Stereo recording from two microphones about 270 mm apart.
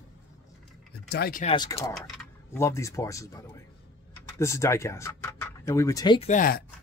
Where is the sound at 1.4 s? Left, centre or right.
Centre.